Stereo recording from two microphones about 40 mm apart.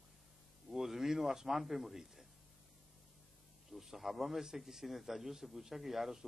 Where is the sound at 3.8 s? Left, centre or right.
Centre.